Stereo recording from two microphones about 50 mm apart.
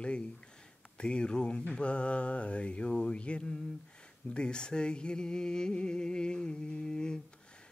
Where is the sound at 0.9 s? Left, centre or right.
Centre.